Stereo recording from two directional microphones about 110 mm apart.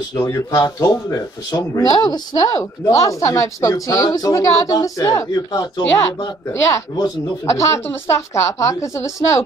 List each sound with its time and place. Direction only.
0.2 s speech: 25° left (ahead or behind)